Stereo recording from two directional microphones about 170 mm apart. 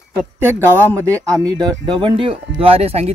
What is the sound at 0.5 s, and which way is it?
Speech, 10° left (ahead or behind).